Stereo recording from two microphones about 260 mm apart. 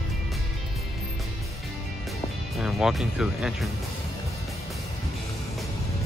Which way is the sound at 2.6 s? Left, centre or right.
Centre.